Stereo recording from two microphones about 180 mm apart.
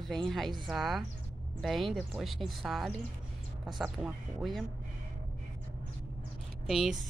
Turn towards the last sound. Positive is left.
turn(degrees=0)  # may be behind; listen again after turning